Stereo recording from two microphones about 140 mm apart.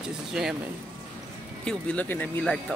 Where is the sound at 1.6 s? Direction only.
5° left (ahead or behind).